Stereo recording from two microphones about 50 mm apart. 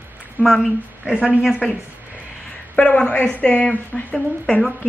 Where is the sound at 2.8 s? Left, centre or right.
Left.